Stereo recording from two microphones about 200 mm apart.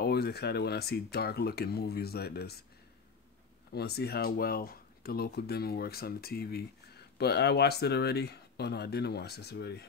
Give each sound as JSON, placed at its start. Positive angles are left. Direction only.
{"t": 0.0, "sound": "speech", "side_deg": 55}
{"t": 3.7, "sound": "speech", "side_deg": 55}